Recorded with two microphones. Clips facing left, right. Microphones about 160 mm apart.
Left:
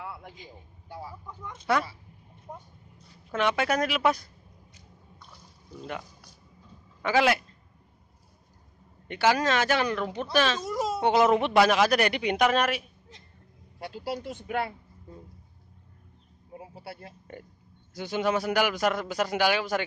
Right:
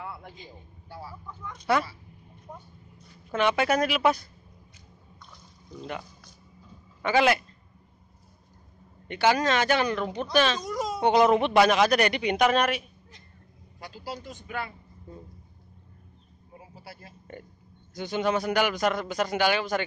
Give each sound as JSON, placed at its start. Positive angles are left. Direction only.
{"t": 0.0, "sound": "a sound", "side_deg": 15}
{"t": 0.8, "sound": "speech", "side_deg": 20}
{"t": 2.5, "sound": "a man's voice", "side_deg": 10}
{"t": 3.3, "sound": "speech", "side_deg": 0}
{"t": 5.2, "sound": "a sound", "side_deg": 5}
{"t": 7.0, "sound": "a man's voice", "side_deg": 0}
{"t": 9.0, "sound": "speech", "side_deg": 0}
{"t": 13.7, "sound": "a man's voice", "side_deg": 65}
{"t": 16.5, "sound": "a man's voice", "side_deg": 65}
{"t": 17.9, "sound": "a man's voice", "side_deg": 5}